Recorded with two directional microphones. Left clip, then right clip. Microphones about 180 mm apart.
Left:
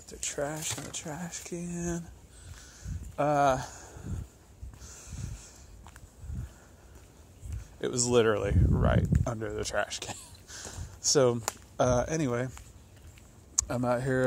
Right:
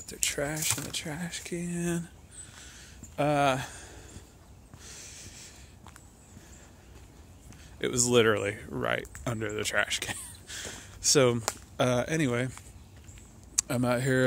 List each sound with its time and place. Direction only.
0.0 s speech: 15° right (ahead or behind)
2.6 s a sound: 5° right (ahead or behind)
3.2 s speech: 5° right (ahead or behind)
4.8 s a sound: 5° right (ahead or behind)
7.8 s speech: 5° right (ahead or behind)
13.6 s speech: 10° right (ahead or behind)